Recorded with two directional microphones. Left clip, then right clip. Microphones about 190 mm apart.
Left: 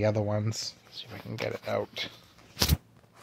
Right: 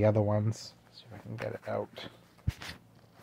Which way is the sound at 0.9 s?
25° left (ahead or behind).